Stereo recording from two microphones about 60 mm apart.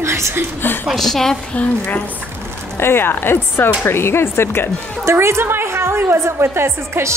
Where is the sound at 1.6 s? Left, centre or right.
Left.